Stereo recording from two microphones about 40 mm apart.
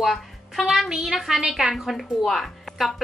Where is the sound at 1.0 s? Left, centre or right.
Centre.